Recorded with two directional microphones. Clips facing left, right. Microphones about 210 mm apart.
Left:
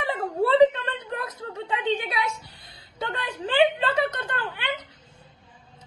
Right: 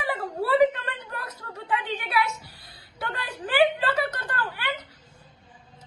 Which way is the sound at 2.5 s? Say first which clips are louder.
Even; 25° left (ahead or behind).